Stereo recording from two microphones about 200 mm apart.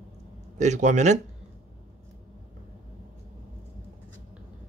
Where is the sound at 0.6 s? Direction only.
35° right (ahead or behind).